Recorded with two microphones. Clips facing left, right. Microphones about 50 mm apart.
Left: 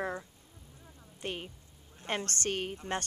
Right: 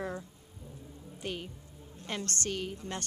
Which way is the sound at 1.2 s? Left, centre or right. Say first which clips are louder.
Even; left.